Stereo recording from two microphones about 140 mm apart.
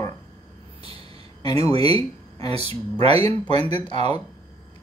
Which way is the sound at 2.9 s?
45° right (ahead or behind).